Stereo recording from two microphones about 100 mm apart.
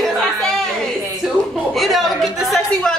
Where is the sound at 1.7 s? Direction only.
Centre (ahead or behind).